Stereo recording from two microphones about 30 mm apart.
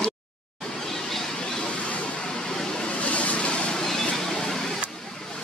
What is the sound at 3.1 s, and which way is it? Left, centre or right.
Vehicle, left.